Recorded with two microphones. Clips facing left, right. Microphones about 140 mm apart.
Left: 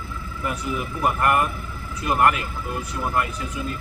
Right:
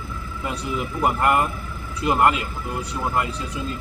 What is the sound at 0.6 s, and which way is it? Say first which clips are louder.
Speech: right 2 dB; 20° right (ahead or behind).